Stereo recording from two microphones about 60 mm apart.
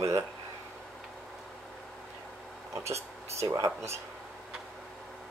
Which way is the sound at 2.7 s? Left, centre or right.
Right.